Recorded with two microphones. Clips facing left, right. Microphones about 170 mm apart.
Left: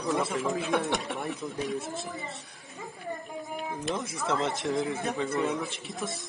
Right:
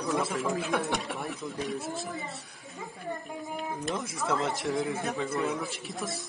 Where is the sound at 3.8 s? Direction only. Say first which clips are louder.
Left 2 dB; centre (ahead or behind).